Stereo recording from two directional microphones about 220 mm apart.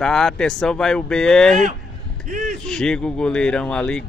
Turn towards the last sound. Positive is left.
turn(degrees=5)  # may be behind; listen again after turning